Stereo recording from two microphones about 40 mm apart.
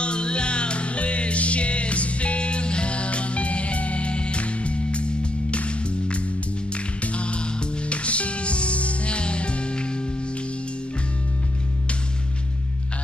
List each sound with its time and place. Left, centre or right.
0.0 s music: left